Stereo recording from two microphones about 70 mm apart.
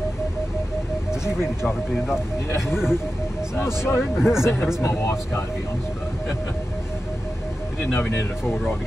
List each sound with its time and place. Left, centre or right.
1.6 s speech: centre
3.5 s speech: left
4.2 s speech: centre
4.8 s speech: left
8.1 s speech: left